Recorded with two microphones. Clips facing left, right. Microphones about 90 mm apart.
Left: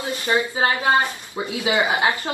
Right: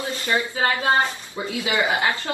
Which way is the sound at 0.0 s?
20° left (ahead or behind).